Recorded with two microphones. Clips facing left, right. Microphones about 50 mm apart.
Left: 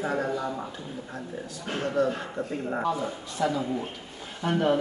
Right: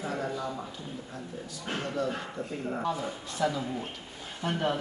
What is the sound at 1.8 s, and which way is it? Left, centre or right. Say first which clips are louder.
Speech: left 7 dB; left.